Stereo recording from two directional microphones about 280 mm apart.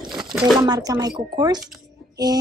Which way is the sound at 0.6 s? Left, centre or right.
Centre.